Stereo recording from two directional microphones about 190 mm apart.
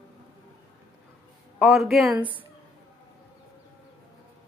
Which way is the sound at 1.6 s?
Centre (ahead or behind).